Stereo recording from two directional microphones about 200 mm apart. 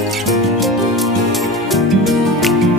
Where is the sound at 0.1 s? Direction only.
Centre (ahead or behind).